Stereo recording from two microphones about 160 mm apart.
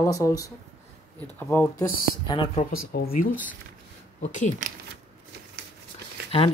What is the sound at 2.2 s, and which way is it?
Speech, 30° left (ahead or behind).